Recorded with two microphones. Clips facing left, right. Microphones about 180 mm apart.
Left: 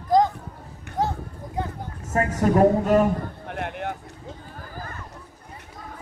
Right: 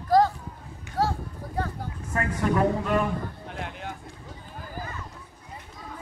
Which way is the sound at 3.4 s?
60° left (ahead or behind).